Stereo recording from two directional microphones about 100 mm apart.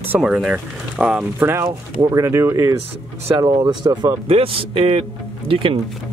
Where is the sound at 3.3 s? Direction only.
40° right (ahead or behind).